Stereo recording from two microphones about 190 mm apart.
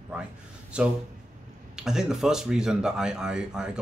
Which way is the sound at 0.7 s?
5° right (ahead or behind).